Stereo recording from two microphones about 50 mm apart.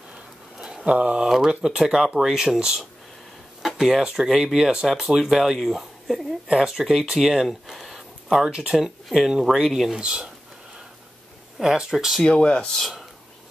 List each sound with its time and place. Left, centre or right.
0.6 s a sound: centre
0.9 s speech: centre
9.9 s speech: centre
11.6 s speech: centre
12.2 s speech: centre